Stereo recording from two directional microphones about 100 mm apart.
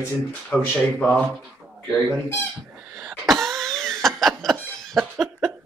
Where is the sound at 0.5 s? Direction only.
10° left (ahead or behind).